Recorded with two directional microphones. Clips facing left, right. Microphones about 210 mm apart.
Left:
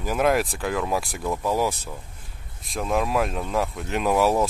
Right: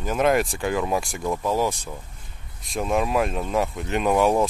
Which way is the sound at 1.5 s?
10° left (ahead or behind).